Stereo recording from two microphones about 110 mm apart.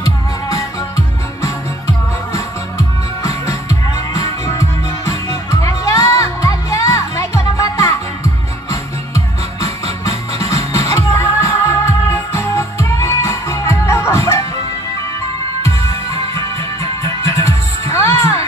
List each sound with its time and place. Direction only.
0.5 s music: 30° left (ahead or behind)
3.3 s music: 30° left (ahead or behind)
17.0 s music: 30° left (ahead or behind)